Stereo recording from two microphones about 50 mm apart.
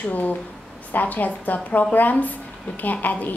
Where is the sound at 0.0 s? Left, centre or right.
Left.